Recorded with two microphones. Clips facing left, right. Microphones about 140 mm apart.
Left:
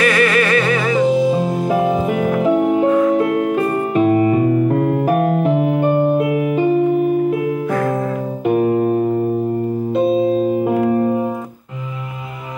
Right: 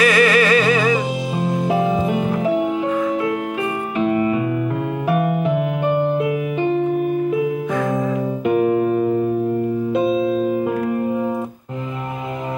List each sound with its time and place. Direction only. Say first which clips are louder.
0.0 s music: even; 10° right (ahead or behind)
1.9 s music: left 2 dB; 55° left (ahead or behind)
6.2 s keyboard: left 4 dB; 50° left (ahead or behind)
8.5 s music: left 2 dB; 45° left (ahead or behind)
10.7 s music: left 5 dB; 35° left (ahead or behind)